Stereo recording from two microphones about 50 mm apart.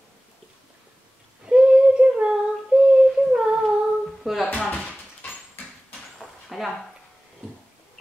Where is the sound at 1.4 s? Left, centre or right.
Centre.